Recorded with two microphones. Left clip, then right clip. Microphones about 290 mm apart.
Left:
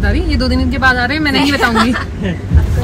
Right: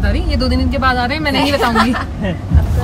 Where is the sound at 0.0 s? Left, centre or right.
Centre.